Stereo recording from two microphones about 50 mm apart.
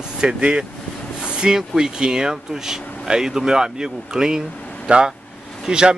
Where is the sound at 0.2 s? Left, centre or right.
Centre.